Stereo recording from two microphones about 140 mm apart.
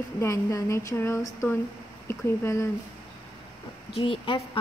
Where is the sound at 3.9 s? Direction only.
40° left (ahead or behind).